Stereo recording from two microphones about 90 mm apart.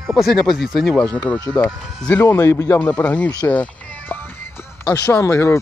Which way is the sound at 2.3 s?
25° left (ahead or behind).